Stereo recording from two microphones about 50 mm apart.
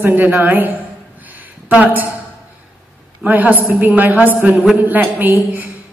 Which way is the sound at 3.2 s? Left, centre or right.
Right.